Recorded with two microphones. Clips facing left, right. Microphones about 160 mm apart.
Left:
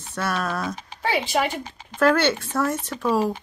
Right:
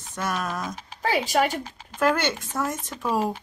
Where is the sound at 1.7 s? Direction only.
5° right (ahead or behind).